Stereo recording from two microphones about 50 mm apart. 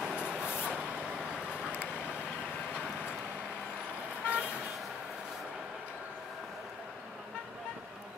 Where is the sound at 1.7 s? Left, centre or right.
Left.